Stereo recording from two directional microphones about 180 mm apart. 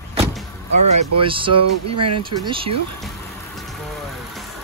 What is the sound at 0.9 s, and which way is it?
Speech, 35° right (ahead or behind).